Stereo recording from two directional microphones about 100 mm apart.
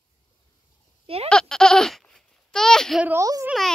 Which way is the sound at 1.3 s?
5° left (ahead or behind).